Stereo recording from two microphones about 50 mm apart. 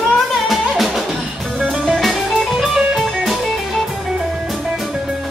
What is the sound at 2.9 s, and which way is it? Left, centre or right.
Music, centre.